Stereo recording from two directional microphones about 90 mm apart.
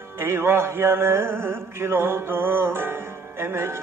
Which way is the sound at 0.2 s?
25° right (ahead or behind).